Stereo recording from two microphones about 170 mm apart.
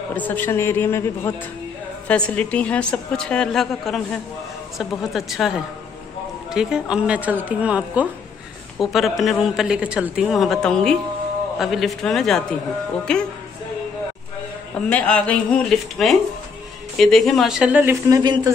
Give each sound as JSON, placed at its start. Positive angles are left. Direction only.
{"t": 0.1, "sound": "a woman's voice", "side_deg": 10}
{"t": 6.5, "sound": "a woman's voice", "side_deg": -5}
{"t": 14.9, "sound": "a woman's voice", "side_deg": 10}
{"t": 18.1, "sound": "speech", "side_deg": -25}